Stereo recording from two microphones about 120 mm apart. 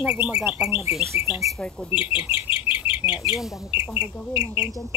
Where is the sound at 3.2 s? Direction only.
15° right (ahead or behind).